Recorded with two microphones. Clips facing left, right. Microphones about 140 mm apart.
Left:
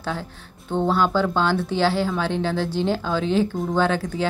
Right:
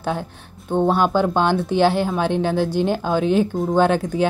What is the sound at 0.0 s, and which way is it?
A woman's voice, 15° right (ahead or behind).